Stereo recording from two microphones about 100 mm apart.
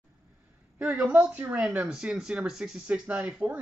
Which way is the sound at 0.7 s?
15° right (ahead or behind).